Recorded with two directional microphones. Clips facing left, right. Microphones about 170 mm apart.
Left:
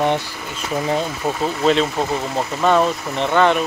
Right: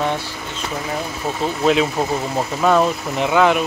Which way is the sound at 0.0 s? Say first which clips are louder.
Left 3 dB; 15° left (ahead or behind).